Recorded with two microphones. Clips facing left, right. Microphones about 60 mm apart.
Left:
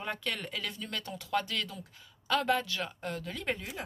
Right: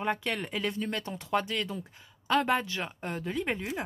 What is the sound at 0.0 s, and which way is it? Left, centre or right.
Speech, right.